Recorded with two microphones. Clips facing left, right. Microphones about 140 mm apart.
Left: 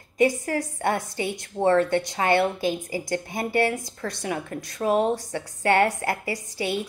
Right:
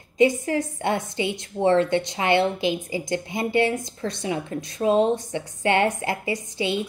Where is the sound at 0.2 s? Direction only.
20° right (ahead or behind).